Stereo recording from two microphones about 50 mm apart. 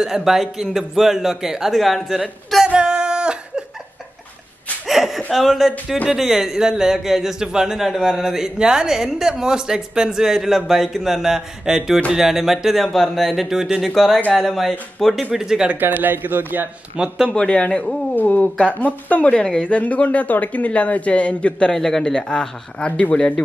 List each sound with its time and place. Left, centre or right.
0.0 s speech: centre
2.7 s a sound: centre
4.8 s a sound: centre
5.3 s speech: centre
15.3 s speech: centre
15.8 s a man's voice: right
16.9 s a man's voice: centre
17.3 s speech: left
18.1 s speech: left
21.7 s speech: centre
22.8 s speech: left